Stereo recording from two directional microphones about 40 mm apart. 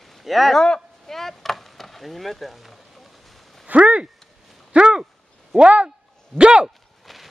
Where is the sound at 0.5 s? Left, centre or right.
Centre.